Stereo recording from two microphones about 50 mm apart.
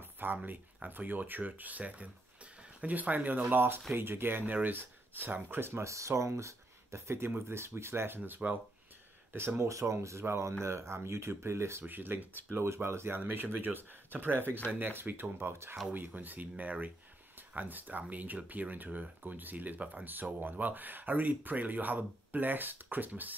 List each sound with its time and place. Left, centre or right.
0.0 s a sound: right
0.8 s speech: right
3.5 s speech: right
5.7 s speech: right
8.4 s speech: centre
9.3 s speech: right
9.6 s speech: right
10.0 s speech: right
11.8 s speech: right
12.6 s speech: right
13.2 s speech: right
16.2 s speech: right
20.1 s speech: right